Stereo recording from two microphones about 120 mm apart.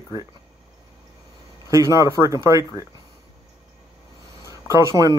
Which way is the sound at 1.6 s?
25° right (ahead or behind).